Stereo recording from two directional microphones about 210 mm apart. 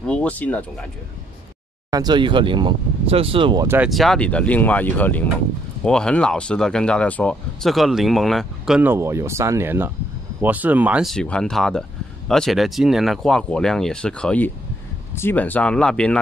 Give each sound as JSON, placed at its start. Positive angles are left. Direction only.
{"t": 0.0, "sound": "speech", "side_deg": 5}
{"t": 1.9, "sound": "speech", "side_deg": -20}
{"t": 3.6, "sound": "speech", "side_deg": -10}